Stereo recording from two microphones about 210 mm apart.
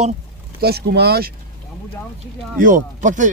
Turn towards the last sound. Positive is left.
turn(degrees=-35)  # may be behind; listen again after turning